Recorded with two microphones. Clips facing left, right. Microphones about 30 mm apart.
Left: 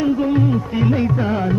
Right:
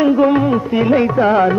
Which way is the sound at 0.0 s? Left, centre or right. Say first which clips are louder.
Right 5 dB; right.